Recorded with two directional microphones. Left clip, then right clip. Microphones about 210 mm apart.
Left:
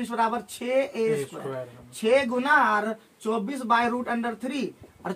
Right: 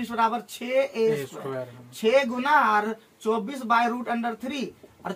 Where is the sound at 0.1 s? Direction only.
10° left (ahead or behind).